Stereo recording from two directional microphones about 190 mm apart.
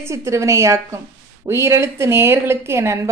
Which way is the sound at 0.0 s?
15° right (ahead or behind).